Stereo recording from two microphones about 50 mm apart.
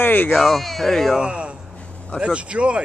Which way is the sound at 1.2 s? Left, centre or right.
Centre.